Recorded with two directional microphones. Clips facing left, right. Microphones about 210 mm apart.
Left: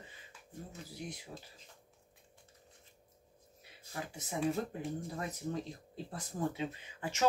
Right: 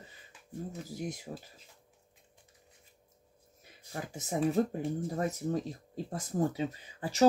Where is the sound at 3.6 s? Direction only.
45° right (ahead or behind).